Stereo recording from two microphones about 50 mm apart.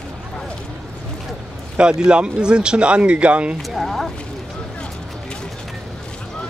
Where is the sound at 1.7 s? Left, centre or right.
Centre.